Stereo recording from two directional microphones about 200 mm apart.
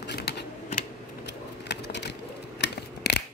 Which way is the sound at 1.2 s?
60° left (ahead or behind).